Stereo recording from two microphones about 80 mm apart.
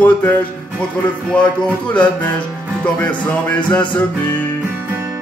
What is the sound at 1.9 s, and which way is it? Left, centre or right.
Music, centre.